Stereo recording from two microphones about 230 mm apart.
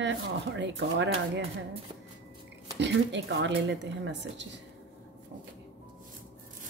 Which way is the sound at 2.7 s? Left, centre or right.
Right.